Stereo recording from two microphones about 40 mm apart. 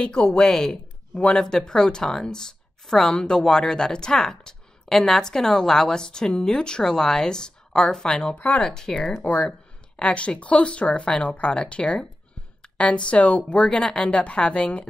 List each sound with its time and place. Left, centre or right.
0.0 s speech: centre
1.1 s speech: left
9.2 s speech: left